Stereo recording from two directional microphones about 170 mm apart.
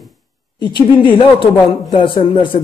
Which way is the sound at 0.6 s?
25° left (ahead or behind).